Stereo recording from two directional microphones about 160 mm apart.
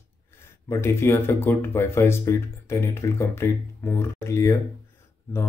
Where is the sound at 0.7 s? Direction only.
15° left (ahead or behind).